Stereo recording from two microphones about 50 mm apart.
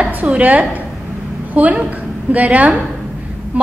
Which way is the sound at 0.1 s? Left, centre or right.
Right.